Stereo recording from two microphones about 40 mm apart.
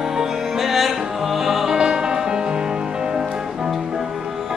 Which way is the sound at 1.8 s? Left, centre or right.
Centre.